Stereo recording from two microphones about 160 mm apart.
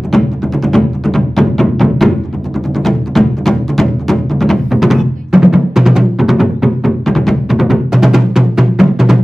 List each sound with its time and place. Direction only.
0.1 s music: centre (ahead or behind)